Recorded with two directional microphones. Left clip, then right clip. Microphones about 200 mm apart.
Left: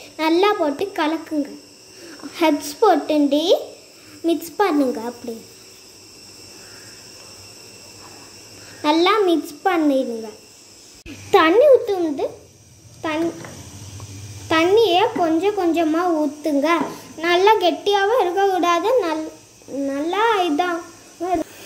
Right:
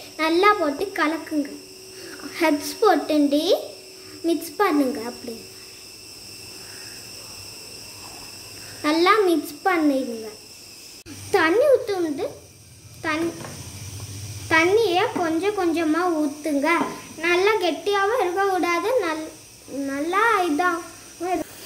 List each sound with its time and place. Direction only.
0.2 s a child's voice: 20° left (ahead or behind)
2.3 s speech: 20° left (ahead or behind)
8.8 s speech: 15° left (ahead or behind)
11.2 s a child's voice: 20° left (ahead or behind)
14.5 s a child's voice: 25° left (ahead or behind)